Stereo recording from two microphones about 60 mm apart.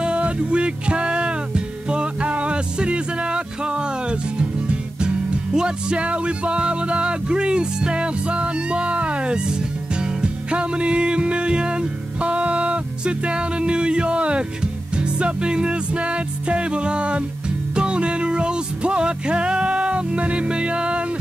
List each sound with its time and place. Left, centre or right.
0.0 s music: centre